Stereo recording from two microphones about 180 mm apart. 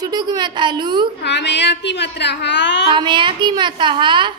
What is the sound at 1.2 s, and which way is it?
A woman's voice, 75° left (ahead or behind).